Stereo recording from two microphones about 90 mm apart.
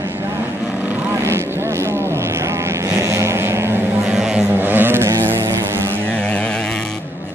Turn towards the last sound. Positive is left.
turn(degrees=-30)  # may be behind; listen again after turning